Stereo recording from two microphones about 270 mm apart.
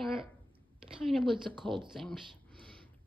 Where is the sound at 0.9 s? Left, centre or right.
Centre.